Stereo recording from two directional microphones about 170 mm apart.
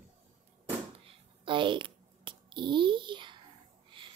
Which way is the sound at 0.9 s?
30° right (ahead or behind).